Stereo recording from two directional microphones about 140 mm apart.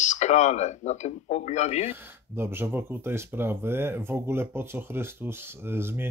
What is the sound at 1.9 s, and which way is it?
Speech, 15° right (ahead or behind).